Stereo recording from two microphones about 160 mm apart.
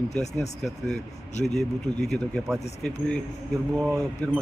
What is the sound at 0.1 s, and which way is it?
Speech, 45° left (ahead or behind).